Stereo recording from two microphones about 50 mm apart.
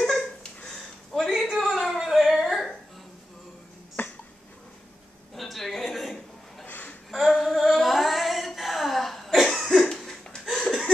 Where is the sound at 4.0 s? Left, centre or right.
Left.